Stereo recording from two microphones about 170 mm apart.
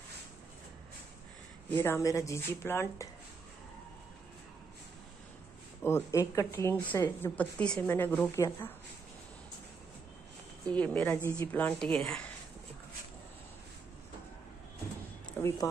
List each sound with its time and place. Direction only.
1.7 s speech: 15° left (ahead or behind)
5.9 s speech: 15° left (ahead or behind)
10.7 s speech: 10° left (ahead or behind)
15.4 s a sound: 10° left (ahead or behind)